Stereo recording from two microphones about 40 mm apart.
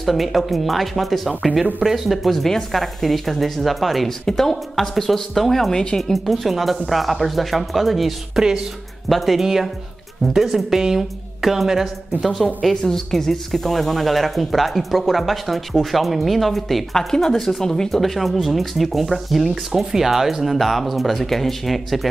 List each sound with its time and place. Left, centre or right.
0.0 s speech: centre
5.7 s speech: centre
5.9 s a woman's voice: centre
12.8 s speech: centre
16.9 s speech: centre